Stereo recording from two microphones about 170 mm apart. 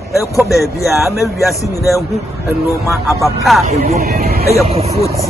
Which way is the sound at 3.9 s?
65° right (ahead or behind).